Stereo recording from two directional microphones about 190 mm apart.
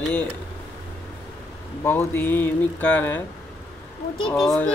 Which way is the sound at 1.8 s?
10° left (ahead or behind).